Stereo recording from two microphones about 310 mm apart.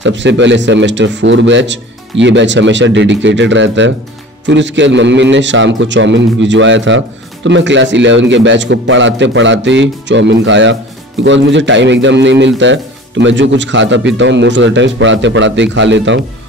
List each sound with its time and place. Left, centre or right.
0.0 s a man's voice: right